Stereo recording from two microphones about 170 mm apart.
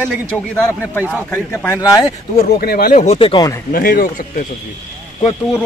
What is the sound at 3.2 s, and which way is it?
Speech, 30° left (ahead or behind).